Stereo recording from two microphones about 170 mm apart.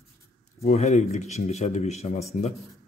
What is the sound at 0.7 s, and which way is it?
Speech, 40° left (ahead or behind).